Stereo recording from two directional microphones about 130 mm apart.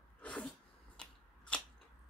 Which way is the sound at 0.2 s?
10° left (ahead or behind).